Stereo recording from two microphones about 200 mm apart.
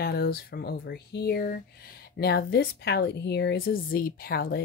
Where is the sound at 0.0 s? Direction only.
50° left (ahead or behind).